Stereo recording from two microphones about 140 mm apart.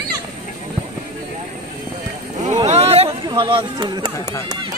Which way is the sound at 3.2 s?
30° right (ahead or behind).